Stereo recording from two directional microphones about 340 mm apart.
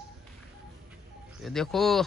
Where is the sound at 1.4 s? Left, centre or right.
Centre.